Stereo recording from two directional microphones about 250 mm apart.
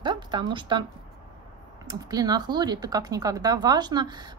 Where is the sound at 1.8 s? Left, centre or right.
Centre.